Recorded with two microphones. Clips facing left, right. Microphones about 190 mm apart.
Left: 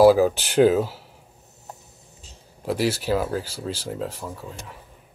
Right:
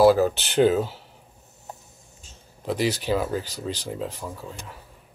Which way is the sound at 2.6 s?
5° left (ahead or behind).